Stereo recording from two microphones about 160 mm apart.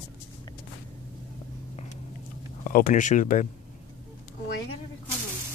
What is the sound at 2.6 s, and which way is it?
Speech, 55° left (ahead or behind).